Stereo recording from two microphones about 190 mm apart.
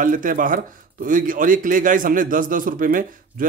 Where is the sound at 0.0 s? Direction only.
45° right (ahead or behind).